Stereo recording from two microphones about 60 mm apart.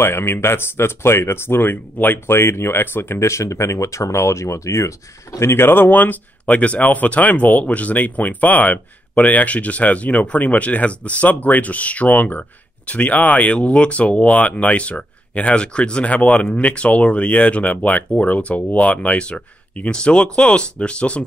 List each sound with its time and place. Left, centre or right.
0.0 s speech: left
5.5 s speech: left; by 21.2 s centre